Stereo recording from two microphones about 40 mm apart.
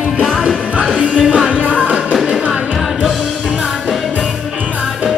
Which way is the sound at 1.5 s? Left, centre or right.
Right.